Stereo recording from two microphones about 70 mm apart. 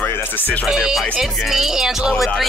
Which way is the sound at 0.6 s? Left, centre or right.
Centre.